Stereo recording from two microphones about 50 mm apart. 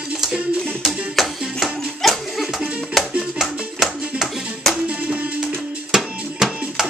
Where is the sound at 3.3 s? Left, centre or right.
Centre.